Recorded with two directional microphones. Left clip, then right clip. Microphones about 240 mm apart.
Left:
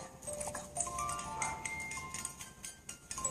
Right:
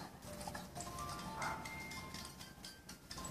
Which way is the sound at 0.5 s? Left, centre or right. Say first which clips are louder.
Left 5 dB; left.